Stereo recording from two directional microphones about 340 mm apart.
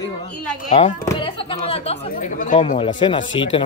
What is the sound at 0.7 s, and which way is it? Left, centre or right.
A man's voice, left.